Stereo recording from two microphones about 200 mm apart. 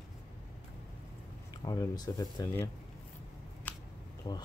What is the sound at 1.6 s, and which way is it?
Speech, 20° left (ahead or behind).